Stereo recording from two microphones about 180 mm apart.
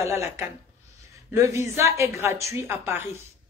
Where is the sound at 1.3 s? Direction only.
15° right (ahead or behind).